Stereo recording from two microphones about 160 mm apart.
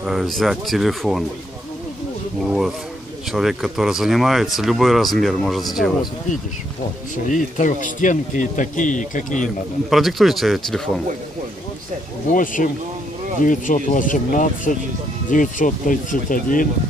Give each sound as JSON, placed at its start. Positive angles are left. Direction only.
{"t": 0.0, "sound": "speech", "side_deg": 0}
{"t": 3.3, "sound": "speech", "side_deg": -5}
{"t": 7.2, "sound": "speech", "side_deg": 50}
{"t": 9.8, "sound": "speech", "side_deg": 0}
{"t": 12.3, "sound": "speech", "side_deg": 55}